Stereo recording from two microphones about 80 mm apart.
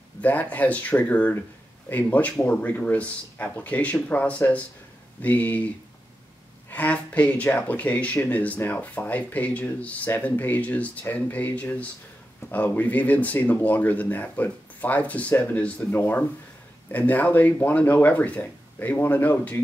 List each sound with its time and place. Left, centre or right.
0.2 s speech: centre
6.7 s speech: centre